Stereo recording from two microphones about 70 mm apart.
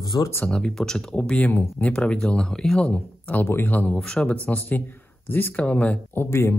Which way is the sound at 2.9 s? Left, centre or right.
Left.